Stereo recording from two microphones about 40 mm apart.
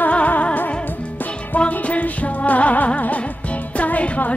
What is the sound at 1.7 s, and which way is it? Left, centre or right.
Music, left.